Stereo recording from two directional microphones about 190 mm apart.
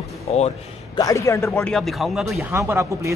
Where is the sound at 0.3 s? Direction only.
30° left (ahead or behind).